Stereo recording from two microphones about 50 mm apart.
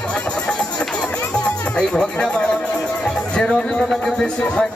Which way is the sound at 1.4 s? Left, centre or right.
Centre.